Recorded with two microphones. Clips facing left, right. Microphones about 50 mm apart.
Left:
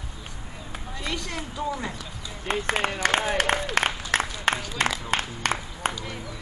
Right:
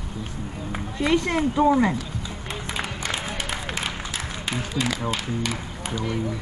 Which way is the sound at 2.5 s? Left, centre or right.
Left.